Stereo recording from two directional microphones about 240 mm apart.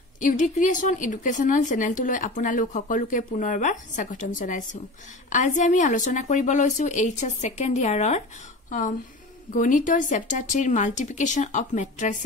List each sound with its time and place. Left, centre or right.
0.2 s speech: left